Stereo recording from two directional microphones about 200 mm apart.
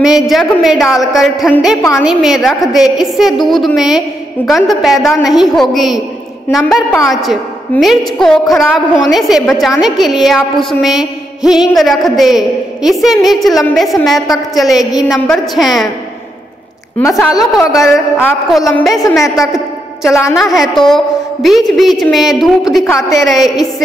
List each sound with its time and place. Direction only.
0.0 s a woman's voice: centre (ahead or behind)
17.1 s a woman's voice: centre (ahead or behind)
19.2 s a woman's voice: 15° left (ahead or behind)
20.3 s a woman's voice: centre (ahead or behind)
22.8 s a woman's voice: 15° left (ahead or behind)
23.2 s a woman's voice: centre (ahead or behind)